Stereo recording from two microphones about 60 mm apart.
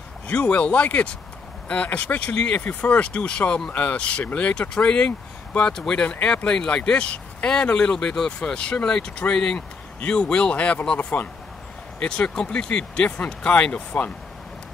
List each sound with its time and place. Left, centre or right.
0.3 s speech: centre